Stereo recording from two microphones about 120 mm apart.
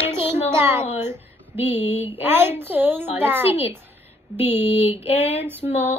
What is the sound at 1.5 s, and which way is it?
Child singing, 60° left (ahead or behind).